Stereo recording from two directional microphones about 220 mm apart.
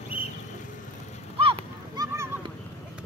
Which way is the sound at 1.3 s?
25° right (ahead or behind).